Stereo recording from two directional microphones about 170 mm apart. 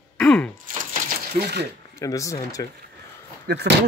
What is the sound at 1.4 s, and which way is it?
Speech, 75° right (ahead or behind).